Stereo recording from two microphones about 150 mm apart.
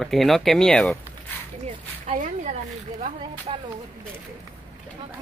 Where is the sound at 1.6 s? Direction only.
50° right (ahead or behind).